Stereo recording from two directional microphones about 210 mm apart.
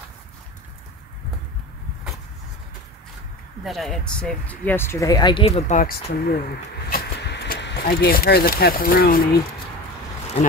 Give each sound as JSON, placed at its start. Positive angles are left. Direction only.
{"t": 3.6, "sound": "speech", "side_deg": 0}